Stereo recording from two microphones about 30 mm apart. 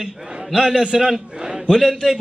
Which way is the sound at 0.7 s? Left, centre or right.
Centre.